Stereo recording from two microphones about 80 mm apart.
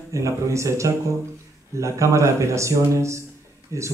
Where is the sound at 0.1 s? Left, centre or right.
Right.